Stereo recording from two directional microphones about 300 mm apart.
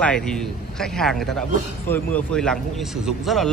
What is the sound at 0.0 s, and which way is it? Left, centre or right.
Speech, centre.